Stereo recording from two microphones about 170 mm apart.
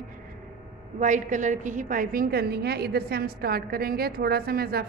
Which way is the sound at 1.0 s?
45° right (ahead or behind).